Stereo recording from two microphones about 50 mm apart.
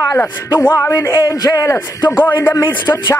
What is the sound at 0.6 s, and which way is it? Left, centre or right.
Speech, left.